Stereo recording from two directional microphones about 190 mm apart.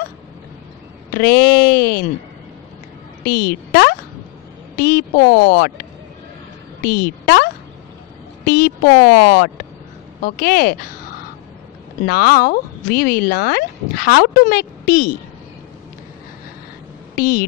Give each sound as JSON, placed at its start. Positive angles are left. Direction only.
{"t": 1.1, "sound": "speech", "side_deg": 55}
{"t": 3.3, "sound": "a woman's voice", "side_deg": 50}
{"t": 8.5, "sound": "speech", "side_deg": 55}
{"t": 12.1, "sound": "speech", "side_deg": 50}
{"t": 17.1, "sound": "speech", "side_deg": 50}